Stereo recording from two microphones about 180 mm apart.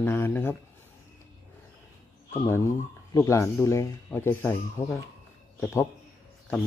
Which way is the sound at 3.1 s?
15° left (ahead or behind).